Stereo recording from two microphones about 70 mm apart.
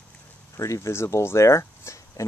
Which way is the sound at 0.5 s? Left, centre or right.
Left.